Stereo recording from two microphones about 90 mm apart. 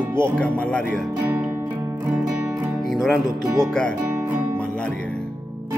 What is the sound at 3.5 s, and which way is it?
Speech, 5° left (ahead or behind).